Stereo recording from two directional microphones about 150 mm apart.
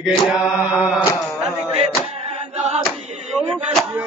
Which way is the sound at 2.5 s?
45° right (ahead or behind).